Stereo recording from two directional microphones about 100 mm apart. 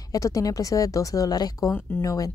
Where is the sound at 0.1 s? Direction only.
35° left (ahead or behind).